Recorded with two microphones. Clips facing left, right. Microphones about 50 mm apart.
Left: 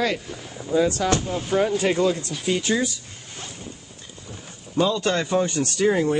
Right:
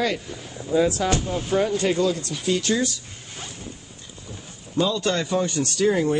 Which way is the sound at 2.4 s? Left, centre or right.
Centre.